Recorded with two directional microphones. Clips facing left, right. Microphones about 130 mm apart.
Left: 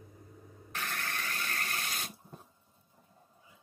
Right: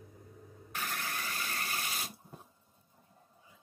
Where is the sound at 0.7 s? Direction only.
5° right (ahead or behind).